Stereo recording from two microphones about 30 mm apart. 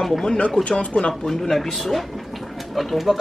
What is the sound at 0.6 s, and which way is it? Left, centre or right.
Speech, left.